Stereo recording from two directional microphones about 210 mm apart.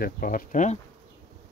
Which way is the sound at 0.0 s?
45° left (ahead or behind).